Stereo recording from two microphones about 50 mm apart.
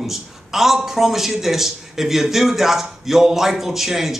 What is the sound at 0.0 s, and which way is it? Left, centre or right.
A man's voice, centre.